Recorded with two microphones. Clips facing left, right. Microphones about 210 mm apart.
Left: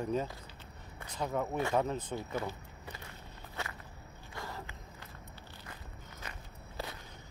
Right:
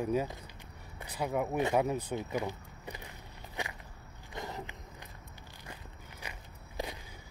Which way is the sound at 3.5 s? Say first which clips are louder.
Right 2 dB; 15° right (ahead or behind).